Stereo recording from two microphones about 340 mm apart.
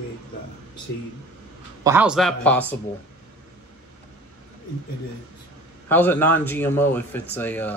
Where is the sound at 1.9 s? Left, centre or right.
Centre.